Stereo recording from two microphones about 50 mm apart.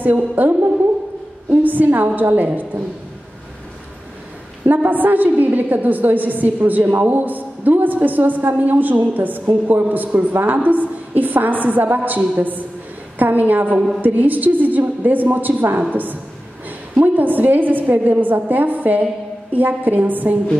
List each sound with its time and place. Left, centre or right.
0.0 s a woman's voice: right
4.6 s a woman's voice: right